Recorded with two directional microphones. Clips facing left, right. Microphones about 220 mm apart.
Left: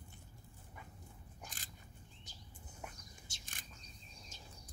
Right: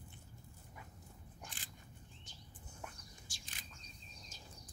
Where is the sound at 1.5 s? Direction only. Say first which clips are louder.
Even; 40° left (ahead or behind).